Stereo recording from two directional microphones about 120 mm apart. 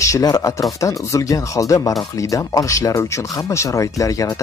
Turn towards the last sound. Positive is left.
turn(degrees=25)  # may be behind; listen again after turning